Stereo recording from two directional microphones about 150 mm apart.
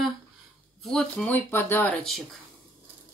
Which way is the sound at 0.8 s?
5° left (ahead or behind).